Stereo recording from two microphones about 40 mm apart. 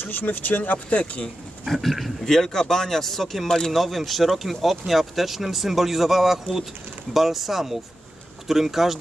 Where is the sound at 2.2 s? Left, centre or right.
Centre.